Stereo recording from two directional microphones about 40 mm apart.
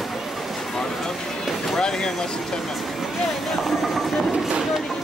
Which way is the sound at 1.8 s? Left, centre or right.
Centre.